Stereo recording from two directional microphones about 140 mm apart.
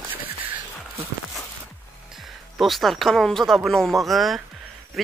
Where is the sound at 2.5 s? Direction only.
Centre (ahead or behind).